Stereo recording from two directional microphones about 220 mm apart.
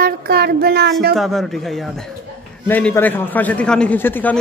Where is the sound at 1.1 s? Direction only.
Centre (ahead or behind).